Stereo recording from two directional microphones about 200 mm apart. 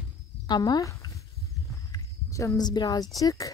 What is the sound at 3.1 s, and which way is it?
Speech, 15° left (ahead or behind).